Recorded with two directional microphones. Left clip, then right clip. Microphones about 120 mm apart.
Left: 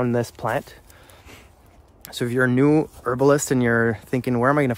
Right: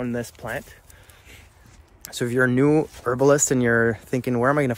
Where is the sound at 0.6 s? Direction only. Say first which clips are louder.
Left 6 dB; 55° left (ahead or behind).